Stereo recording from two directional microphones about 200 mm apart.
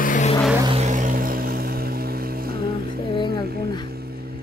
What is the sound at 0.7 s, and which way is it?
Vehicle, 35° right (ahead or behind).